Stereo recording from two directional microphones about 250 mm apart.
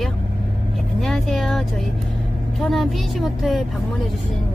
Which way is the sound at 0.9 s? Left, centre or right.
Centre.